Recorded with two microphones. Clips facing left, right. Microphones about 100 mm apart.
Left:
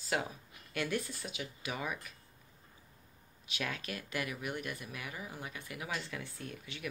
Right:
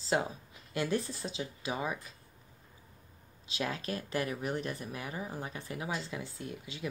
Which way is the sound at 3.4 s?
30° right (ahead or behind).